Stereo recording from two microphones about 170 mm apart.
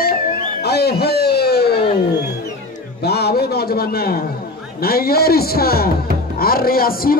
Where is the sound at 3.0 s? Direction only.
70° left (ahead or behind).